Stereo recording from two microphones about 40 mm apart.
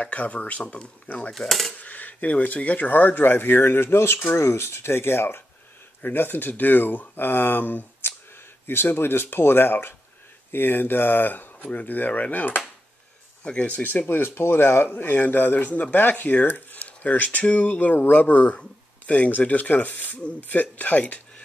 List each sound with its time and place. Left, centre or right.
0.0 s speech: left
1.3 s speech: centre
1.8 s speech: left
6.0 s speech: left
8.6 s speech: left
14.0 s speech: left